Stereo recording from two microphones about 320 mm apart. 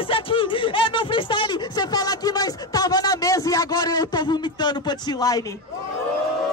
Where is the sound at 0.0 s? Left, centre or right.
Centre.